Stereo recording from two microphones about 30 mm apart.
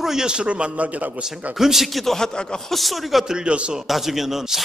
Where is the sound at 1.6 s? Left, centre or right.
Centre.